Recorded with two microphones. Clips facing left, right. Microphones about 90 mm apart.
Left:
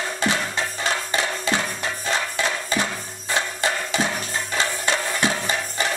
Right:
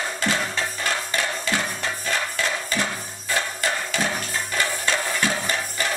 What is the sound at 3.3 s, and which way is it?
Music, 20° left (ahead or behind).